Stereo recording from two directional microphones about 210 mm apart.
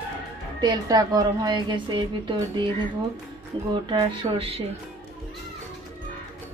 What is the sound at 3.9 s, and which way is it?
Speech, 25° right (ahead or behind).